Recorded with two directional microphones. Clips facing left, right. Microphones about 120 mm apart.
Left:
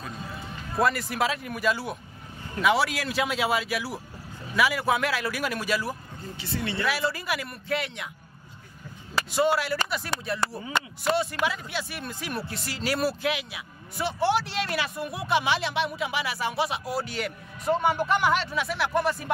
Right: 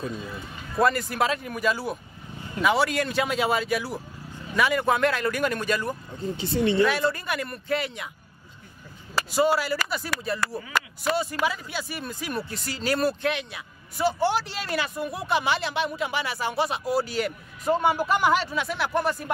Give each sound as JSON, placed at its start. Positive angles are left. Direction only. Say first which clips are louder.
{"t": 0.7, "sound": "speech", "louder": "right 2 dB", "side_deg": 0}
{"t": 6.3, "sound": "speech", "louder": "right 8 dB", "side_deg": -20}
{"t": 6.9, "sound": "speech", "louder": "right 2 dB", "side_deg": 5}
{"t": 9.1, "sound": "speech", "louder": "right 1 dB", "side_deg": 0}
{"t": 10.4, "sound": "speech", "louder": "even", "side_deg": 25}
{"t": 11.1, "sound": "speech", "louder": "even", "side_deg": 0}